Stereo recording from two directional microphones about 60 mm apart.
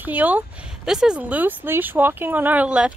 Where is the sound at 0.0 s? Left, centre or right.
Right.